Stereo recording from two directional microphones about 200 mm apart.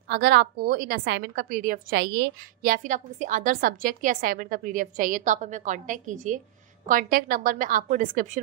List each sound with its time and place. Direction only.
0.1 s a woman's voice: 55° right (ahead or behind)